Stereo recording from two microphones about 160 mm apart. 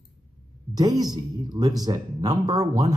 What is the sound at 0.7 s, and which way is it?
Speech, 25° right (ahead or behind).